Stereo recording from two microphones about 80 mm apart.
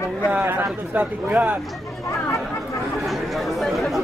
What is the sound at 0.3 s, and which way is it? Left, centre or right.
A man's voice, right.